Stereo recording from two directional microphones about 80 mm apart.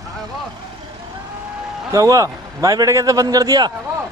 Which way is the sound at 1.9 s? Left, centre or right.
Right.